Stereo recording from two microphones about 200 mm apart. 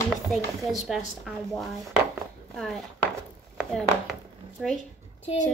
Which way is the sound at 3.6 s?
Centre (ahead or behind).